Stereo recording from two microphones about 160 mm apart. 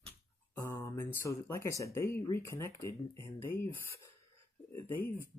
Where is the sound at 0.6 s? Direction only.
15° left (ahead or behind).